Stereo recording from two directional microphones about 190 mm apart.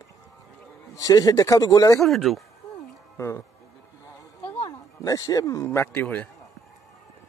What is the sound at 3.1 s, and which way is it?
Speech, 15° left (ahead or behind).